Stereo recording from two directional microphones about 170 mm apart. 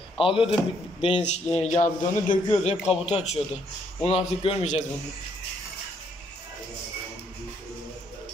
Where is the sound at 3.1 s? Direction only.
40° left (ahead or behind).